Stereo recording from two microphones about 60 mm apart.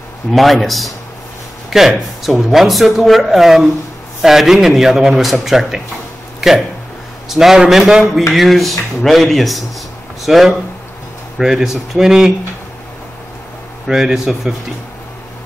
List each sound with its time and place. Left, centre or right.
0.3 s speech: centre
7.2 s speech: centre
13.8 s speech: centre